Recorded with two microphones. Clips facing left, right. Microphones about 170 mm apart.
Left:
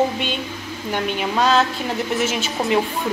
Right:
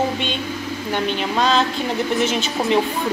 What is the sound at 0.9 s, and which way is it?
A woman's voice, 5° left (ahead or behind).